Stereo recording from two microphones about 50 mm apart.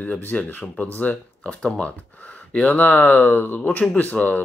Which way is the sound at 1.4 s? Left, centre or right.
Left.